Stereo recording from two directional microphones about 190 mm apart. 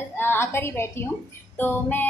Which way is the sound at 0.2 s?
10° left (ahead or behind).